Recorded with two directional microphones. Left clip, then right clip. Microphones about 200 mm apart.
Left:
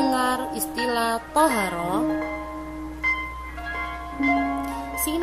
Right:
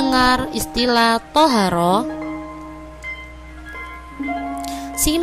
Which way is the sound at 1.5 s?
55° right (ahead or behind).